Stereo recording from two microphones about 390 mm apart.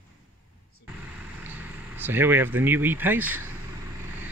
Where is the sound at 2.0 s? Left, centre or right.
Centre.